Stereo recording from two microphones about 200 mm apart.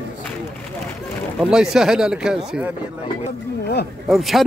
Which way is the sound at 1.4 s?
5° right (ahead or behind).